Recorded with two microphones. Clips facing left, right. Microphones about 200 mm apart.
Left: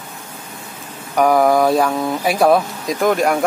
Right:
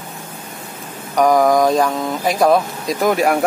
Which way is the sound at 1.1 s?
5° left (ahead or behind).